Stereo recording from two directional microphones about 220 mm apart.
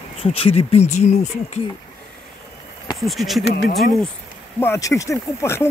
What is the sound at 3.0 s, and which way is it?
Speech, centre (ahead or behind).